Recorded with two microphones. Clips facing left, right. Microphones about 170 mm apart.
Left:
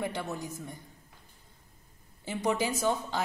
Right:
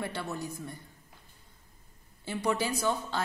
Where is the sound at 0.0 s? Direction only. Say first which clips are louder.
Left 1 dB; 15° left (ahead or behind).